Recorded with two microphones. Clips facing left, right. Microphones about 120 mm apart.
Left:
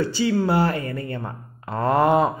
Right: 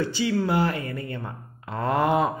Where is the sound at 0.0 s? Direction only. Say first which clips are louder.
Left 3 dB; 35° left (ahead or behind).